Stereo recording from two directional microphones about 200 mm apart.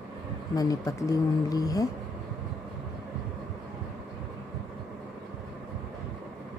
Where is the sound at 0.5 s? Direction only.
15° left (ahead or behind).